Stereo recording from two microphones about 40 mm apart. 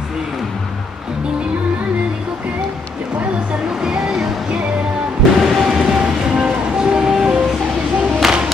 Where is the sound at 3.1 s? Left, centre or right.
Right.